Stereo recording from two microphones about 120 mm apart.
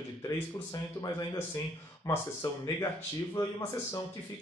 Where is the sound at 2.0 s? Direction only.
30° left (ahead or behind).